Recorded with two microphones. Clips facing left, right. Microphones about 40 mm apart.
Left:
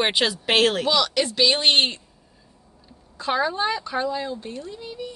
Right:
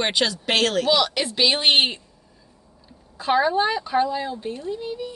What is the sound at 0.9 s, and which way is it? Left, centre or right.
Speech, centre.